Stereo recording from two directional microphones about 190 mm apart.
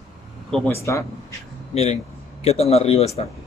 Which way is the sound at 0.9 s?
15° left (ahead or behind).